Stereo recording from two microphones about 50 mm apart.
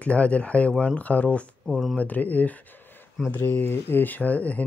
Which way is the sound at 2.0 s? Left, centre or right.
Left.